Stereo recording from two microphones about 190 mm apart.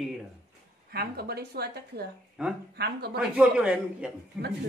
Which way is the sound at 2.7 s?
55° right (ahead or behind).